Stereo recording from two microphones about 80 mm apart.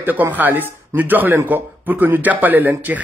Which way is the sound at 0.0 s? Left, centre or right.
Right.